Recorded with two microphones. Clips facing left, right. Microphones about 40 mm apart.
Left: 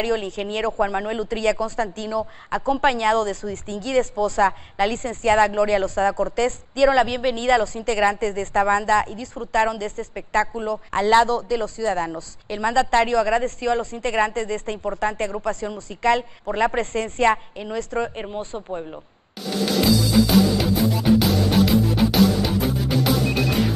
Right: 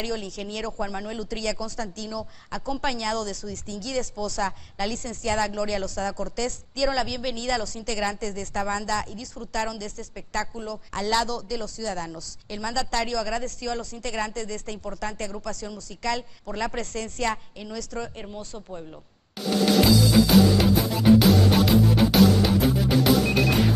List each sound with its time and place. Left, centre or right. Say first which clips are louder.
0.0 s speech: left 7 dB; left
19.5 s music: even; centre